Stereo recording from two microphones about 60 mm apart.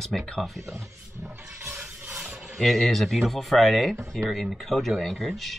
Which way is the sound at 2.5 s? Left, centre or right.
Centre.